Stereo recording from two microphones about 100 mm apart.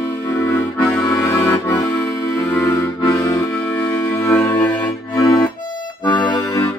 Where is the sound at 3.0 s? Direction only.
35° left (ahead or behind).